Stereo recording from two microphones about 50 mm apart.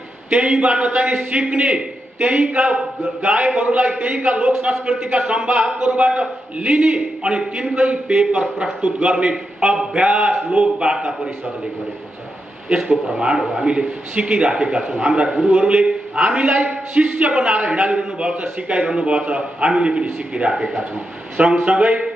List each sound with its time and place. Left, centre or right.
0.3 s a man's voice: right
12.6 s a man's voice: right
13.7 s a man's voice: centre